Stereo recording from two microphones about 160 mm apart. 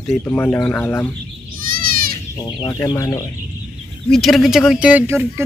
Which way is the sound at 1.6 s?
65° right (ahead or behind).